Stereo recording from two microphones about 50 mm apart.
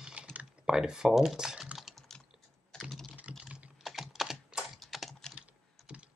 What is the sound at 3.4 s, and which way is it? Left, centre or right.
Computer keyboard, right.